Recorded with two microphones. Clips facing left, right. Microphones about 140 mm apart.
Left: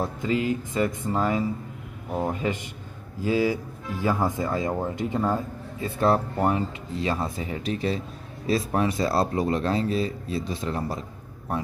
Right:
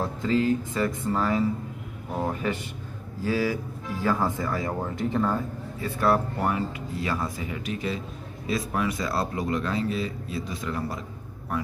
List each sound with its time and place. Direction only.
0.0 s speech: 15° left (ahead or behind)